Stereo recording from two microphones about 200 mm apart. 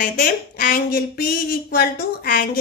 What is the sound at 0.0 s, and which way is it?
A woman's voice, 45° left (ahead or behind).